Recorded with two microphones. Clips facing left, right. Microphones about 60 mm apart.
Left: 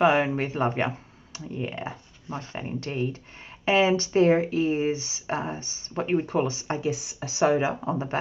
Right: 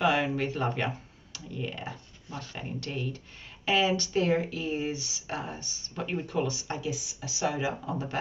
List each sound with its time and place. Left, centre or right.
0.0 s speech: left